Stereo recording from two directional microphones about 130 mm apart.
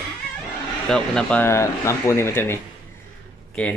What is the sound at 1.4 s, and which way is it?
Speech, 20° left (ahead or behind).